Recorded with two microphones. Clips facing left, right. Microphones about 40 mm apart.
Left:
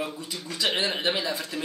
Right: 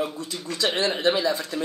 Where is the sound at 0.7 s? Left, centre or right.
Centre.